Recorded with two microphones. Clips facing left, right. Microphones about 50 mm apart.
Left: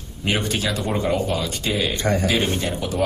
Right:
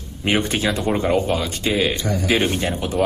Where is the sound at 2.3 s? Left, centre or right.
Right.